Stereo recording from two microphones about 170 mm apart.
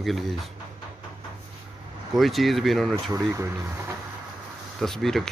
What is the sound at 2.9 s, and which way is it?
Speech, 20° right (ahead or behind).